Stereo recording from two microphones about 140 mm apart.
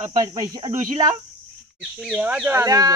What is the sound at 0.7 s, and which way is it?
Speech, 60° right (ahead or behind).